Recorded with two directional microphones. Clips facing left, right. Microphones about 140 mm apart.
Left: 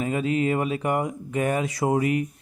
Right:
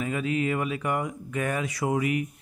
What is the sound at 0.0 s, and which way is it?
A man's voice, 30° left (ahead or behind).